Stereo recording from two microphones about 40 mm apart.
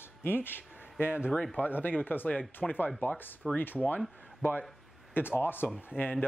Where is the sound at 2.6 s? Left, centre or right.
Centre.